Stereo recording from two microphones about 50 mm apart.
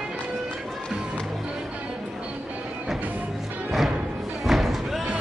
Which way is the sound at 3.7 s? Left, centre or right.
Centre.